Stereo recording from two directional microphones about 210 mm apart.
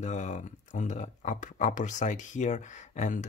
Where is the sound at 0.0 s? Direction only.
35° left (ahead or behind).